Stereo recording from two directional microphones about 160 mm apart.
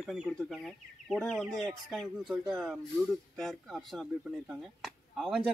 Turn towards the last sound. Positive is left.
turn(degrees=0)  # may be behind; listen again after turning